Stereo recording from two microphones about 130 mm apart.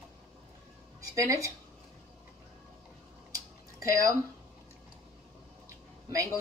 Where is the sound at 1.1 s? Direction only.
25° right (ahead or behind).